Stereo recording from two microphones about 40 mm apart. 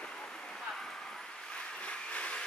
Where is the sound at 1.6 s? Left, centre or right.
Left.